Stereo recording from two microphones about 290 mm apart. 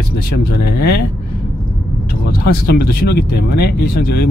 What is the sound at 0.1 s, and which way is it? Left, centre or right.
Speech, left.